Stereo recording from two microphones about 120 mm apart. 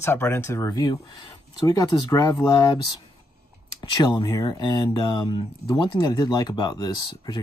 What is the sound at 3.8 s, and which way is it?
Speech, 40° left (ahead or behind).